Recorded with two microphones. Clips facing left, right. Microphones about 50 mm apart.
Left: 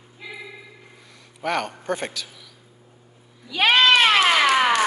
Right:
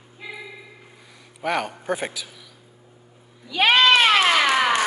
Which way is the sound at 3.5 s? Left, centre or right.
Centre.